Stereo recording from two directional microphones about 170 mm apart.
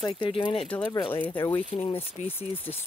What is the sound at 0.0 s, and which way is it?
Speech, 30° left (ahead or behind).